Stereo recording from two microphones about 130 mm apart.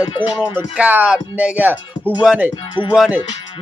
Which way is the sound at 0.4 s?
10° right (ahead or behind).